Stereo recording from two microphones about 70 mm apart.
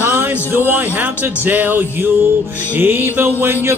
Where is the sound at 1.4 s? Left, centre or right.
Right.